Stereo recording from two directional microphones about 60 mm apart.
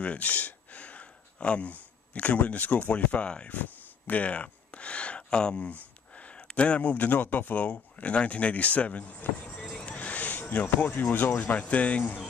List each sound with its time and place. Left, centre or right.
0.0 s speech: left
9.6 s a sound: centre
11.5 s speech: left